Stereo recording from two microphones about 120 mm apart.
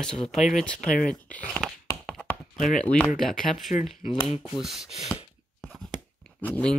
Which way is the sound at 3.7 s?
90° left.